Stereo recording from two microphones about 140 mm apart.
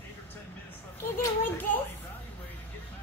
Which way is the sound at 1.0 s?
15° left (ahead or behind).